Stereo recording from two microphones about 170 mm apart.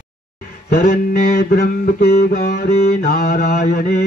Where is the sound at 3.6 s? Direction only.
50° left (ahead or behind).